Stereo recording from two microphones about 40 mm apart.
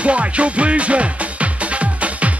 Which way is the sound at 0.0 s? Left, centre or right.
Right.